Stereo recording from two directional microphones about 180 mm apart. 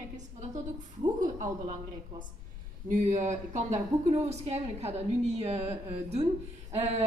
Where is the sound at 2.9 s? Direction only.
45° right (ahead or behind).